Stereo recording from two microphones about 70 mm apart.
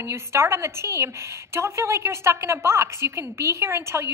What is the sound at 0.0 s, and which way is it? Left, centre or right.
A woman's voice, right.